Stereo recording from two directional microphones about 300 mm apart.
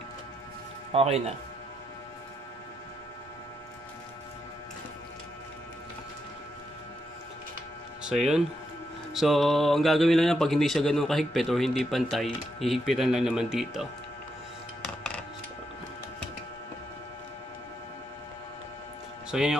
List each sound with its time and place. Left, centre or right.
0.9 s speech: right
9.1 s speech: centre
19.3 s speech: centre